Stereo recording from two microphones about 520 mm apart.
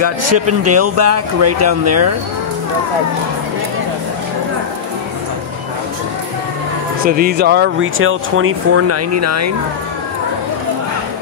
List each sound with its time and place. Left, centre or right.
0.0 s speech: right
7.1 s speech: centre